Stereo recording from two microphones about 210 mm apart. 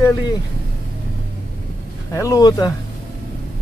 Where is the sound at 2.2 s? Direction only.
15° left (ahead or behind).